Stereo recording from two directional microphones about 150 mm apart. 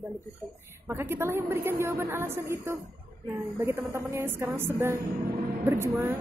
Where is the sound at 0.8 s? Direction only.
15° right (ahead or behind).